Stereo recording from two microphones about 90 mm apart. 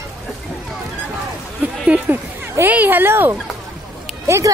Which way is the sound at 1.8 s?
15° right (ahead or behind).